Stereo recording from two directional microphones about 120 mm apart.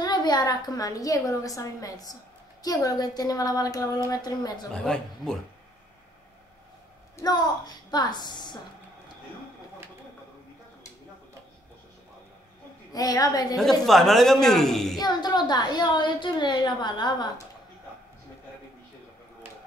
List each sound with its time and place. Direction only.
0.0 s a woman's voice: 35° left (ahead or behind)
4.8 s speech: 5° left (ahead or behind)
7.2 s a woman's voice: 35° left (ahead or behind)
12.9 s a woman's voice: 30° left (ahead or behind)
13.6 s speech: centre (ahead or behind)
15.0 s a woman's voice: 35° left (ahead or behind)